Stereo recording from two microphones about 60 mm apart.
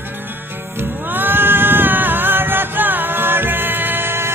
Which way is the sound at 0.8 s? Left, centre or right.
Right.